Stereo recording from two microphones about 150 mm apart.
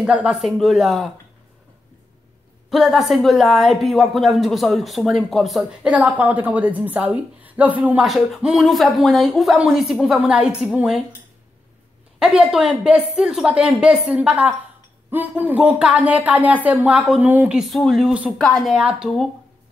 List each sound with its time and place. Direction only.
0.0 s a woman's voice: 5° right (ahead or behind)
2.7 s a woman's voice: centre (ahead or behind)
12.2 s a woman's voice: 5° right (ahead or behind)